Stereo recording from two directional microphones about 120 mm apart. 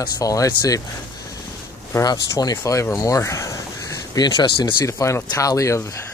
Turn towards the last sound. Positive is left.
turn(degrees=25)  # may be behind; listen again after turning